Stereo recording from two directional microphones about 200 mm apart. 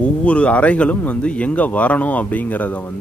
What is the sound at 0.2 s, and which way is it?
Speech, 5° left (ahead or behind).